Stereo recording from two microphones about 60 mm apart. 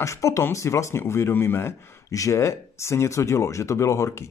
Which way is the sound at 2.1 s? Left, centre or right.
Left.